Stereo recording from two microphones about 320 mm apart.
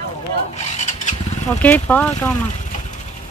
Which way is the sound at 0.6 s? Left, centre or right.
Left.